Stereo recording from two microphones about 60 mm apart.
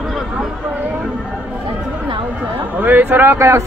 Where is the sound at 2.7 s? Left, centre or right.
Right.